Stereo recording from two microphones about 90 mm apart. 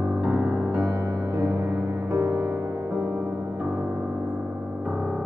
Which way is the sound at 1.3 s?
40° right (ahead or behind).